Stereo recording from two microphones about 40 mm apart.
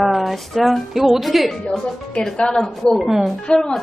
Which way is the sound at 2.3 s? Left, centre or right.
Left.